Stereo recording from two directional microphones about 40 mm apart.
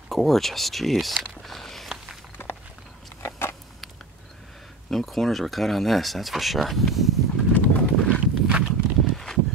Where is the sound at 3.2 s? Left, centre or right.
Left.